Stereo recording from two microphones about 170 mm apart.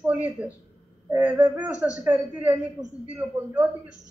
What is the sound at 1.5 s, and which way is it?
A woman's voice, 10° right (ahead or behind).